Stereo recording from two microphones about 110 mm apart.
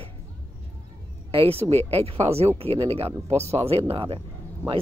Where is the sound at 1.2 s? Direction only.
60° right (ahead or behind).